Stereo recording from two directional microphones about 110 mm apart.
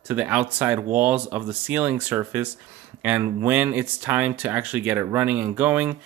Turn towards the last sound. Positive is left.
turn(degrees=-15)  # may be behind; listen again after turning